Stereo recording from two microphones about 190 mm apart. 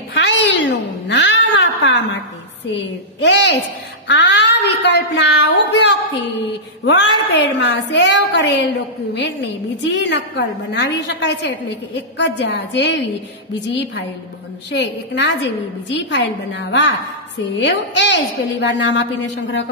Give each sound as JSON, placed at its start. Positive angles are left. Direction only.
{"t": 0.1, "sound": "cat", "side_deg": 65}
{"t": 1.0, "sound": "a sound", "side_deg": 70}
{"t": 2.8, "sound": "a woman's voice", "side_deg": 70}